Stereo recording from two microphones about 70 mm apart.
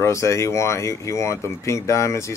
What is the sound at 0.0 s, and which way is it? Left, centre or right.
Speech, left.